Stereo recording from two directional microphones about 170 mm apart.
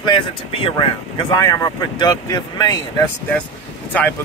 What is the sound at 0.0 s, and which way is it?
Speech, 30° left (ahead or behind).